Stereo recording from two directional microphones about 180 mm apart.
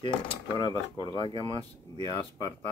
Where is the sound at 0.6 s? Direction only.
25° left (ahead or behind).